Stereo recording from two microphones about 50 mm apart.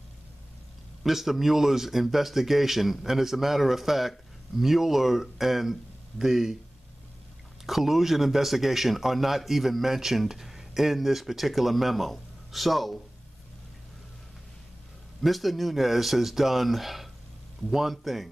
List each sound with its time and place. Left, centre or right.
1.0 s speech: centre
7.6 s speech: centre
15.2 s speech: centre